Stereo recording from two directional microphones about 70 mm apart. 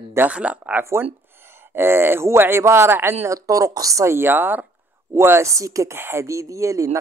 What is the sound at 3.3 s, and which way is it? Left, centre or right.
Speech, right.